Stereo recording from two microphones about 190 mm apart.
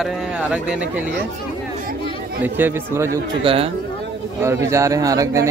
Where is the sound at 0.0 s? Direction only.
Centre (ahead or behind).